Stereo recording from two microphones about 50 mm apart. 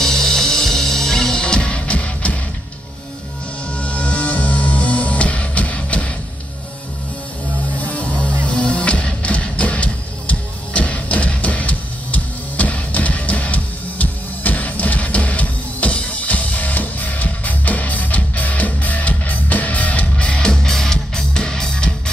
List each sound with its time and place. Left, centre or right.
0.0 s music: centre; by 2.3 s left
3.7 s music: left
7.7 s music: left